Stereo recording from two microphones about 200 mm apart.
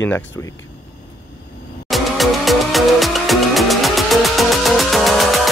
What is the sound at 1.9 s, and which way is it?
Music, centre (ahead or behind).